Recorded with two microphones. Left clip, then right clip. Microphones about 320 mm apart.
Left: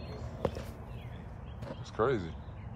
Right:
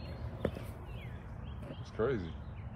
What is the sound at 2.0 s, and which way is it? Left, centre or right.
Speech, centre.